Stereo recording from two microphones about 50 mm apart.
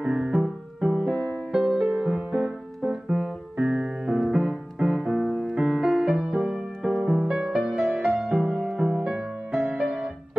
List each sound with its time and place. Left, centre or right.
0.0 s music: centre
5.6 s music: centre; by 9.8 s right